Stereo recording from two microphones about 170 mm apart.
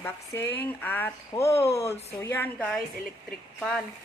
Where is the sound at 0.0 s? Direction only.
15° left (ahead or behind).